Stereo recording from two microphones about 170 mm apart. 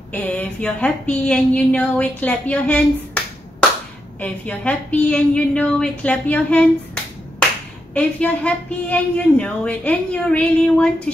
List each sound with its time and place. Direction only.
0.1 s a woman's voice: 10° left (ahead or behind)
4.2 s a woman's voice: 10° left (ahead or behind)
7.9 s a woman's voice: 10° left (ahead or behind)